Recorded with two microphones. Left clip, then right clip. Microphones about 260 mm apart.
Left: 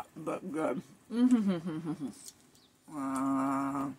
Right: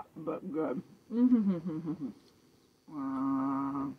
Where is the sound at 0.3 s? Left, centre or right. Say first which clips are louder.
Left 1 dB; centre.